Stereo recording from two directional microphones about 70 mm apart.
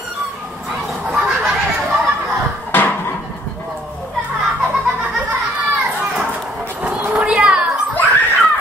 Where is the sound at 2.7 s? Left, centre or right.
Left.